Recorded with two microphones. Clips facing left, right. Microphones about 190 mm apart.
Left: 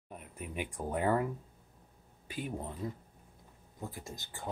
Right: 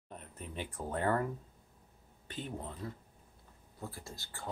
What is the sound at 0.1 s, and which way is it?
Speech, 10° left (ahead or behind).